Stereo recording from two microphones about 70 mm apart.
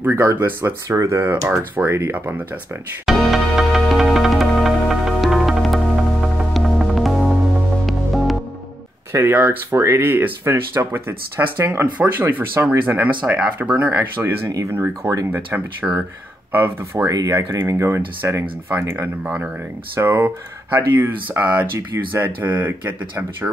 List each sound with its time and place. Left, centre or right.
0.0 s speech: right
0.9 s speech: right
2.1 s speech: right
3.1 s music: centre
9.2 s speech: right
17.0 s speech: right
17.6 s speech: right
20.0 s speech: right